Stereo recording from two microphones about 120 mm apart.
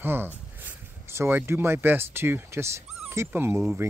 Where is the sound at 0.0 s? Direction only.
20° right (ahead or behind).